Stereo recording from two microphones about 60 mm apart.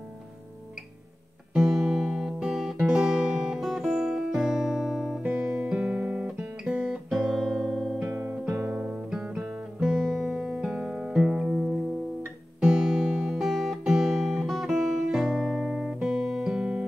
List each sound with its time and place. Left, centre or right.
1.5 s music: centre
5.2 s music: right
5.7 s guitar: centre
7.1 s music: centre
8.1 s music: centre
9.8 s music: centre
16.0 s music: centre